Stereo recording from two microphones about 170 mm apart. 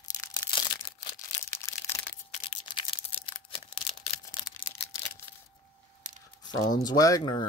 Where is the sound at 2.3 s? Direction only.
35° left (ahead or behind).